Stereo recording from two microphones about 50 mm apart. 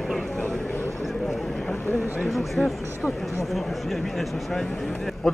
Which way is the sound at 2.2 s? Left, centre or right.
Centre.